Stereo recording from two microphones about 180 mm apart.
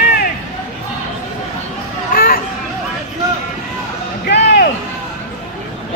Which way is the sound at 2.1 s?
55° left (ahead or behind).